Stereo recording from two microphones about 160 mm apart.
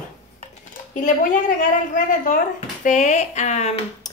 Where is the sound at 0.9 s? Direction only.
50° left (ahead or behind).